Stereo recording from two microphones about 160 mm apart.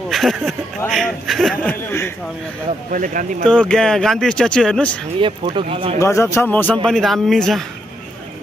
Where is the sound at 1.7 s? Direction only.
15° left (ahead or behind).